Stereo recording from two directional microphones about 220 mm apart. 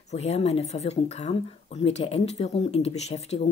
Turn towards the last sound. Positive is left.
turn(degrees=30)  # may be behind; listen again after turning